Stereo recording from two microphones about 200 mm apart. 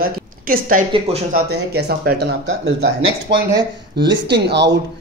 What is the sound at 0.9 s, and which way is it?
Speech, 30° right (ahead or behind).